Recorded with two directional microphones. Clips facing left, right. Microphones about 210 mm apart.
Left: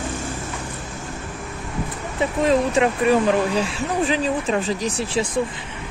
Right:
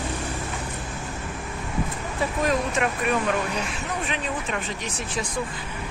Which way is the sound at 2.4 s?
30° left (ahead or behind).